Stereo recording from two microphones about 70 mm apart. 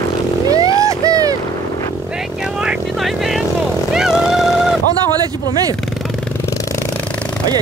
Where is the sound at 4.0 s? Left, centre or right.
Centre.